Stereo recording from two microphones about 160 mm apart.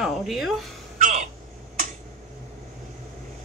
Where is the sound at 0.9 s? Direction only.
50° right (ahead or behind).